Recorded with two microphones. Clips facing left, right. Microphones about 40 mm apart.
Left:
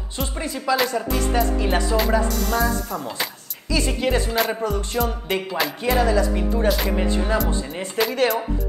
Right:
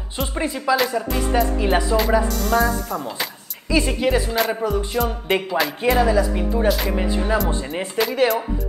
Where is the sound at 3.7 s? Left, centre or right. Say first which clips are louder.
Right 3 dB; centre.